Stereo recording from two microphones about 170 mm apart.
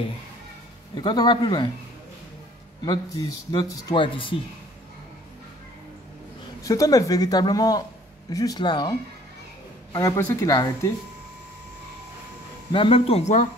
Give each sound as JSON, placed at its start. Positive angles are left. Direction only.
{"t": 0.9, "sound": "speech", "side_deg": 25}
{"t": 2.8, "sound": "speech", "side_deg": 20}
{"t": 6.6, "sound": "speech", "side_deg": 20}
{"t": 9.9, "sound": "speech", "side_deg": 20}
{"t": 12.7, "sound": "speech", "side_deg": 30}